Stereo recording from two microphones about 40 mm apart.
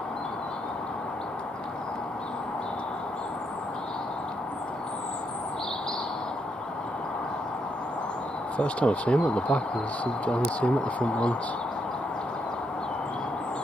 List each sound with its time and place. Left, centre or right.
8.5 s speech: left